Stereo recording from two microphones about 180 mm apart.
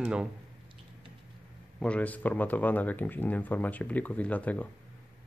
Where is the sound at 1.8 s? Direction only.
5° left (ahead or behind).